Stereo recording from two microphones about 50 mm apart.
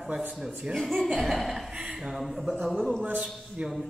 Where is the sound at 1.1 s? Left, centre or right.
Centre.